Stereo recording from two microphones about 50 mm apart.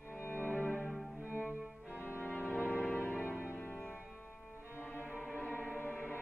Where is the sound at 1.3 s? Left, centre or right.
Right.